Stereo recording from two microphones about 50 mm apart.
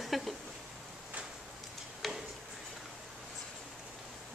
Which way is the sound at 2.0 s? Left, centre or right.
Centre.